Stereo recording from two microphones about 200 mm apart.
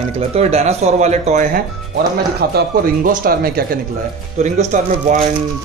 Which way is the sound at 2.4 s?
55° right (ahead or behind).